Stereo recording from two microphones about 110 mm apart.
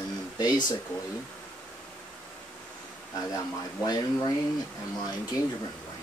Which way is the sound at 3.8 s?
40° left (ahead or behind).